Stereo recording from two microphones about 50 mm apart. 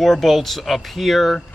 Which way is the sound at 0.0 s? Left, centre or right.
Centre.